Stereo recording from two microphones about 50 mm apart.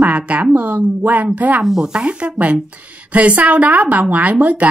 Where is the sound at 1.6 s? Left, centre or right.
Centre.